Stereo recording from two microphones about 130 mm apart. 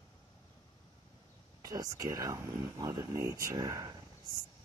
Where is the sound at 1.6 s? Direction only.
25° right (ahead or behind).